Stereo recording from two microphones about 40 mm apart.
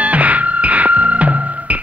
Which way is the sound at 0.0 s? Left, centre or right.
Right.